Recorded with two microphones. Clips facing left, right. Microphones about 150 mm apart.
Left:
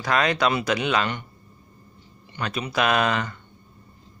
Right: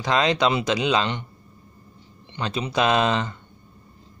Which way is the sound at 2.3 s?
25° right (ahead or behind).